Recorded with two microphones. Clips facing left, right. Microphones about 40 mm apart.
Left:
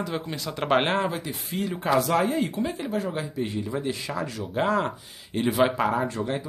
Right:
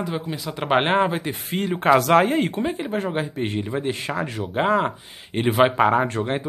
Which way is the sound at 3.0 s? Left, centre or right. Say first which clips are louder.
Right 3 dB; right.